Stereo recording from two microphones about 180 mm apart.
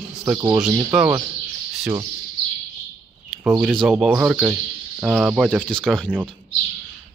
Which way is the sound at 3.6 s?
Centre (ahead or behind).